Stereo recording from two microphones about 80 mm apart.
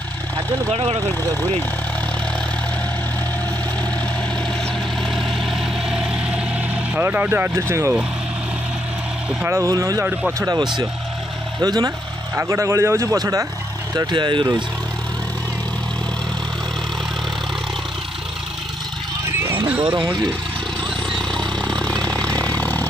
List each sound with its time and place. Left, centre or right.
5.1 s vehicle: centre
7.0 s speech: right
9.6 s speech: right
11.6 s speech: right
12.4 s speech: right
14.1 s speech: right
19.8 s speech: right
21.1 s a sound: centre